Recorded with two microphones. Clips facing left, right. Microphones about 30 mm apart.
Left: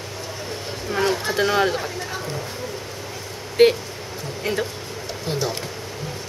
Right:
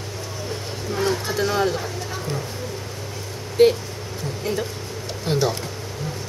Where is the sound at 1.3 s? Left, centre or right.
Left.